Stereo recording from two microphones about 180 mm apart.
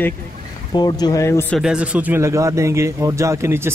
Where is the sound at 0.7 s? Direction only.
25° left (ahead or behind).